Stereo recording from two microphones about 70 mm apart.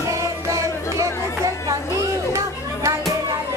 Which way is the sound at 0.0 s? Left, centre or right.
Right.